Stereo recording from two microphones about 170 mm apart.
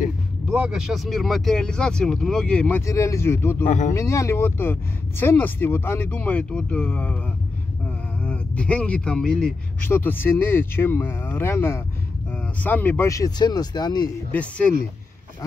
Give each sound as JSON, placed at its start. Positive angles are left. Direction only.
{"t": 0.5, "sound": "speech", "side_deg": -5}
{"t": 2.8, "sound": "speech", "side_deg": 20}
{"t": 3.6, "sound": "speech", "side_deg": 45}
{"t": 3.9, "sound": "speech", "side_deg": 15}
{"t": 8.2, "sound": "speech", "side_deg": 5}
{"t": 14.3, "sound": "speech", "side_deg": 5}